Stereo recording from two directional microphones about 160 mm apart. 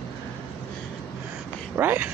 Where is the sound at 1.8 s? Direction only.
10° right (ahead or behind).